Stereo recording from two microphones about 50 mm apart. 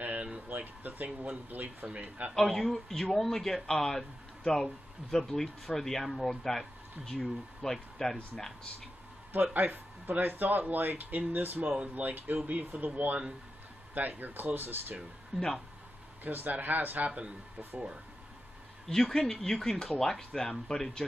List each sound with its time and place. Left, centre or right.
0.0 s a sound: right
0.5 s a man's voice: right
2.3 s speech: centre
5.1 s speech: centre
9.3 s speech: right
11.6 s a man's voice: centre
11.9 s speech: right
16.3 s speech: right
18.9 s speech: centre